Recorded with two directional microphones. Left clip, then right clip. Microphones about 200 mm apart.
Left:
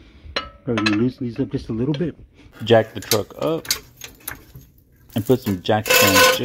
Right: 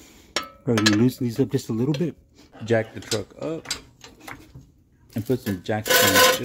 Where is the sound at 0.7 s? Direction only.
45° right (ahead or behind).